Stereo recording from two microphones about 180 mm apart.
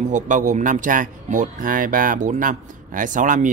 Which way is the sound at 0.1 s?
45° right (ahead or behind).